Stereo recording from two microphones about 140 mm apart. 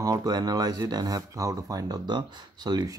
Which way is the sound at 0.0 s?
25° right (ahead or behind).